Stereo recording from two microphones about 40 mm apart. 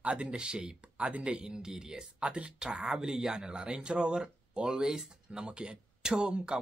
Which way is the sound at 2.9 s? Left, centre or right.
Centre.